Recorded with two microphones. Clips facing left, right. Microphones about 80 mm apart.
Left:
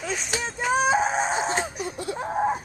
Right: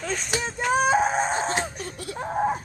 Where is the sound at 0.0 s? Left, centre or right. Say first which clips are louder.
Right 1 dB; centre.